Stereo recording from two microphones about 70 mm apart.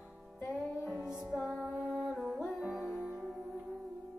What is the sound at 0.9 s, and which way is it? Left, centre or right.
Music, centre.